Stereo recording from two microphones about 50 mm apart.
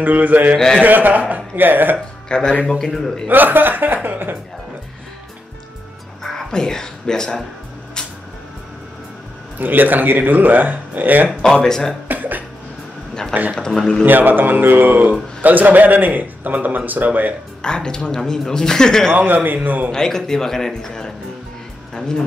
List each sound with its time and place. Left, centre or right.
0.0 s a man's voice: right
0.6 s speech: centre
0.8 s a man's voice: right
2.2 s speech: centre
3.3 s a man's voice: right
6.2 s music: centre
9.6 s a man's voice: right
11.4 s speech: centre
12.1 s cough: right
13.6 s speech: centre
14.0 s a man's voice: right
17.6 s speech: centre
19.1 s a man's voice: right
19.9 s speech: centre